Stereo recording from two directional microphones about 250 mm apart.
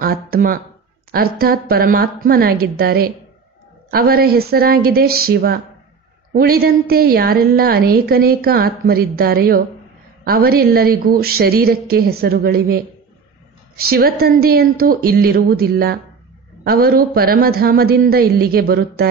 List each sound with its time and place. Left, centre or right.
0.0 s a woman's voice: right
13.8 s a woman's voice: right